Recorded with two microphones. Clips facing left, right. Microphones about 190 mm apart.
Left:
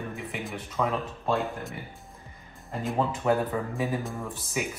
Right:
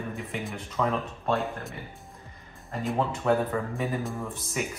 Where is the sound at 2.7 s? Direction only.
Centre (ahead or behind).